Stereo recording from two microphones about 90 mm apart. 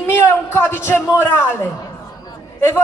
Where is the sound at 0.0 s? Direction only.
30° left (ahead or behind).